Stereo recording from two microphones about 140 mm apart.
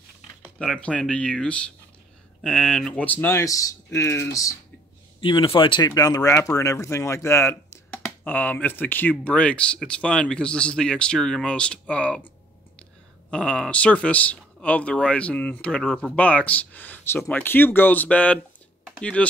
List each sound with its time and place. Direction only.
0.6 s speech: 5° left (ahead or behind); by 4.6 s 25° left (ahead or behind)
5.2 s speech: 35° left (ahead or behind); by 12.2 s 10° left (ahead or behind)
13.3 s speech: 5° left (ahead or behind)